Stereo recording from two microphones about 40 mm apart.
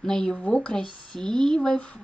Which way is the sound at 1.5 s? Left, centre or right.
Left.